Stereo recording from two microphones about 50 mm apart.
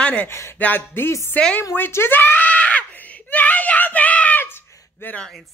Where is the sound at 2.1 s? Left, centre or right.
Left.